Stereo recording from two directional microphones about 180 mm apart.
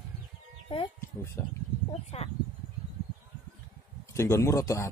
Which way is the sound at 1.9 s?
35° left (ahead or behind).